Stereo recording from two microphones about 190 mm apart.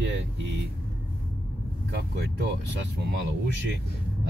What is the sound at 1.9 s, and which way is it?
Speech, 65° right (ahead or behind).